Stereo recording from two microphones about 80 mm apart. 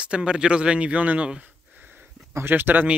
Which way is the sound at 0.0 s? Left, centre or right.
Centre.